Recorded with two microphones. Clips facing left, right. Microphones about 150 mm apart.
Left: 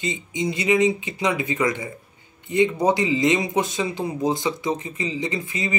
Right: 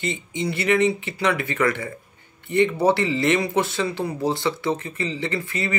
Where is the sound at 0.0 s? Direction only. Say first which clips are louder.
Left 1 dB; 15° left (ahead or behind).